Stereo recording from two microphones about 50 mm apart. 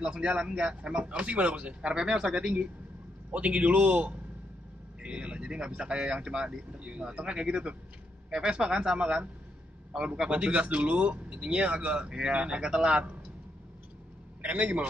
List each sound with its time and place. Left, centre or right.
0.0 s speech: right
3.3 s speech: right
14.4 s speech: right